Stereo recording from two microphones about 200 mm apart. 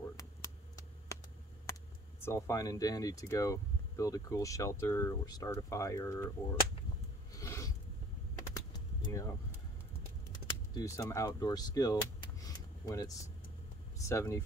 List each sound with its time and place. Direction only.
1.1 s a sound: 15° left (ahead or behind)
1.7 s speech: 10° left (ahead or behind)
7.3 s a sound: 15° left (ahead or behind)
8.5 s vehicle: 15° left (ahead or behind)
10.7 s speech: 15° left (ahead or behind)
12.4 s vehicle: 15° left (ahead or behind)
13.9 s speech: 15° left (ahead or behind)